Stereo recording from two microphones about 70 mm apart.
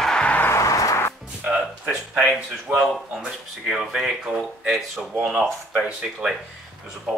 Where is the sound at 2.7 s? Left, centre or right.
Right.